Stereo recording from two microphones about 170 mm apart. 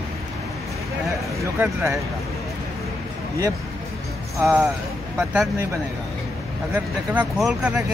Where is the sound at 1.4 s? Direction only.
15° right (ahead or behind).